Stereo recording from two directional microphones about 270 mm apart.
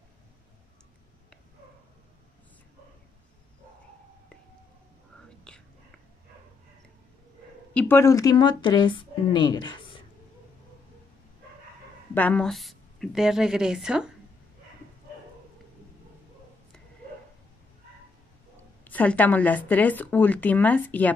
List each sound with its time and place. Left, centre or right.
5.5 s whispering: centre
7.7 s speech: centre
12.1 s a woman's voice: centre
18.9 s speech: centre